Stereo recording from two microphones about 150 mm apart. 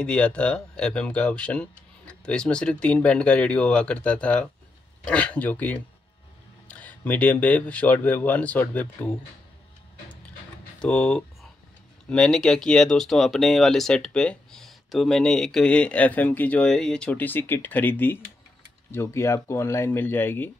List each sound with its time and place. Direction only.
0.0 s speech: 10° left (ahead or behind)
10.8 s speech: 5° left (ahead or behind)